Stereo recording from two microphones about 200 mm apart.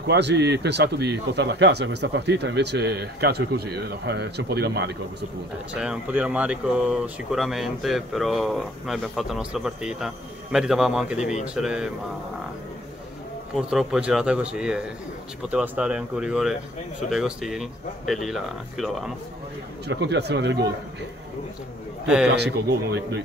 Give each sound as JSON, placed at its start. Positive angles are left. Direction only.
{"t": 0.0, "sound": "speech", "side_deg": -60}
{"t": 5.7, "sound": "speech", "side_deg": -5}
{"t": 13.6, "sound": "speech", "side_deg": -5}
{"t": 19.9, "sound": "speech", "side_deg": -60}
{"t": 22.0, "sound": "a man's voice", "side_deg": -5}